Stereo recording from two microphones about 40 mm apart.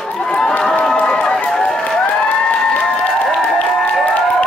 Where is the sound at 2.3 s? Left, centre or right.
Left.